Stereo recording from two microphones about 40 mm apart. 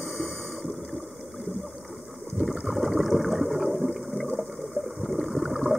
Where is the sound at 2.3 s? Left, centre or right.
Centre.